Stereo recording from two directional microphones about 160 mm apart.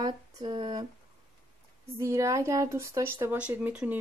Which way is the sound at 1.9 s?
20° right (ahead or behind).